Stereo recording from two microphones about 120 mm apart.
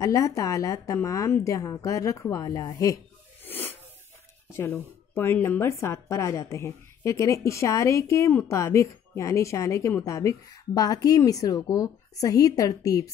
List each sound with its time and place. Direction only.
0.0 s a woman's voice: 25° left (ahead or behind)
3.4 s sneeze: 15° left (ahead or behind)
4.5 s a woman's voice: 20° left (ahead or behind)